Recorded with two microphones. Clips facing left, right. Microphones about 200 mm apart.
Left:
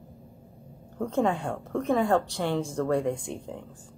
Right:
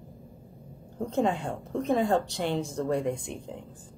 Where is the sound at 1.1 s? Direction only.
20° right (ahead or behind).